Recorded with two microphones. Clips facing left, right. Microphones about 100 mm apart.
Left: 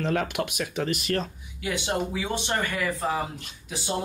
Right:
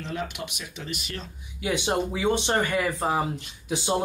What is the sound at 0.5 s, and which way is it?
Speech, 50° left (ahead or behind).